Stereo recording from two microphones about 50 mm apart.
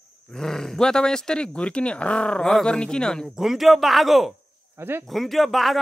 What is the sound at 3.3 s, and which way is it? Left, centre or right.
Speech, centre.